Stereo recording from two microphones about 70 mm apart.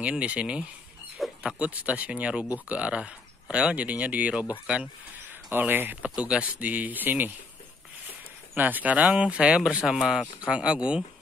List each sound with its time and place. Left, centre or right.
0.0 s speech: centre
1.1 s dog: centre
1.6 s speech: right
6.1 s speech: centre
8.5 s speech: right